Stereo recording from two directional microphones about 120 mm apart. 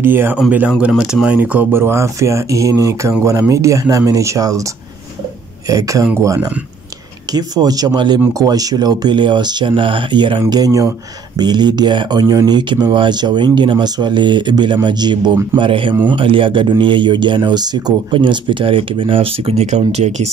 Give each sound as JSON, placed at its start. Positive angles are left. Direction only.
{"t": 0.0, "sound": "speech", "side_deg": -20}
{"t": 5.7, "sound": "speech", "side_deg": -30}
{"t": 10.5, "sound": "speech", "side_deg": -30}